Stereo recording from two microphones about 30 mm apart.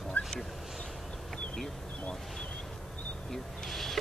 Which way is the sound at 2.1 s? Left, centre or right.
Centre.